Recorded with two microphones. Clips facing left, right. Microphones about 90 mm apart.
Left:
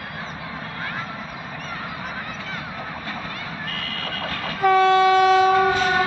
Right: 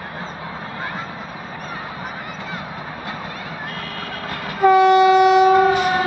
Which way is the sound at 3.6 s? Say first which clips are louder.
Right 1 dB; 20° right (ahead or behind).